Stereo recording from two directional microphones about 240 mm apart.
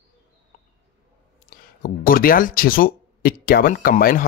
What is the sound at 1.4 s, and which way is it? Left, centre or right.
Speech, left.